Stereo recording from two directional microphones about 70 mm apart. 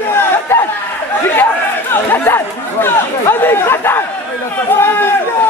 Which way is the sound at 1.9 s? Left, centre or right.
Left.